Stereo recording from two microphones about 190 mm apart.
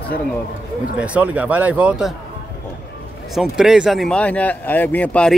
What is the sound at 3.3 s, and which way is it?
Speech, centre (ahead or behind).